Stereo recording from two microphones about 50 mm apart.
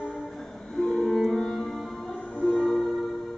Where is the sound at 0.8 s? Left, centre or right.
Centre.